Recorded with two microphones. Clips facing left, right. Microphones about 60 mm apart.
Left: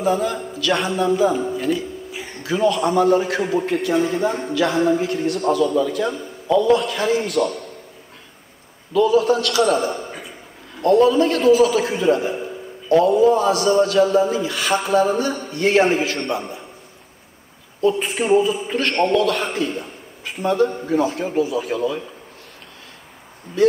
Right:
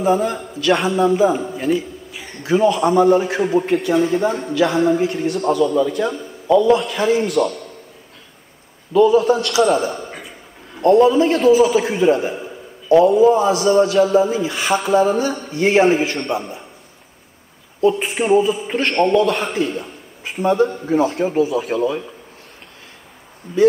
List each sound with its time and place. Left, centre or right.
0.0 s a man's voice: centre
9.0 s a man's voice: centre
18.0 s a man's voice: centre
21.6 s a man's voice: right